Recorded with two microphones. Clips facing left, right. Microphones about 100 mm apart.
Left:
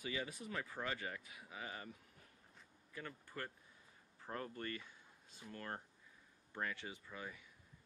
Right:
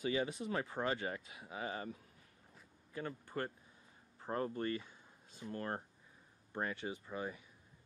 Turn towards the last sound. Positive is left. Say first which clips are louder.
# right 8 dB
turn(degrees=-30)  # may be behind; listen again after turning